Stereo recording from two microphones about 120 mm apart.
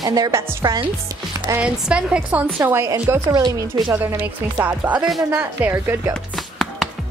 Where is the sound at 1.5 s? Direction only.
10° right (ahead or behind).